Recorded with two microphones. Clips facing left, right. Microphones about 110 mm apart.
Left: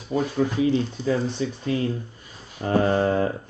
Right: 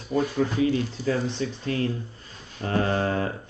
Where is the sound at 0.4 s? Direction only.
25° left (ahead or behind).